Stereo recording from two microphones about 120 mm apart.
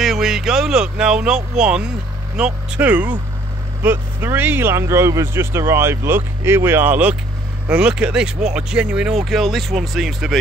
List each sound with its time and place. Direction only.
0.0 s speech: 5° right (ahead or behind)